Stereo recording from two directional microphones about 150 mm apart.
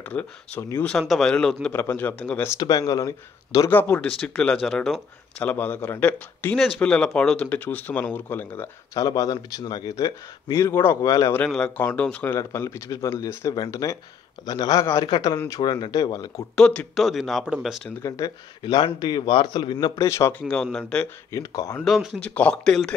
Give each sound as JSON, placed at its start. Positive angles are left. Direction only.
{"t": 0.0, "sound": "speech", "side_deg": 10}
{"t": 2.6, "sound": "a man's voice", "side_deg": 25}
{"t": 8.9, "sound": "a man's voice", "side_deg": 25}
{"t": 11.4, "sound": "a man's voice", "side_deg": 10}
{"t": 16.5, "sound": "speech", "side_deg": 5}
{"t": 18.0, "sound": "a man's voice", "side_deg": 20}
{"t": 18.6, "sound": "a man's voice", "side_deg": 35}
{"t": 20.4, "sound": "speech", "side_deg": 5}
{"t": 21.3, "sound": "a man's voice", "side_deg": 25}
{"t": 21.8, "sound": "speech", "side_deg": 0}